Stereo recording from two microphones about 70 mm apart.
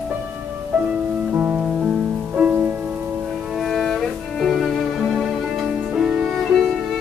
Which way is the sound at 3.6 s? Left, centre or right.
Centre.